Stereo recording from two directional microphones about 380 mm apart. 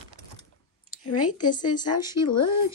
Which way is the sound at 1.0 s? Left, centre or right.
Left.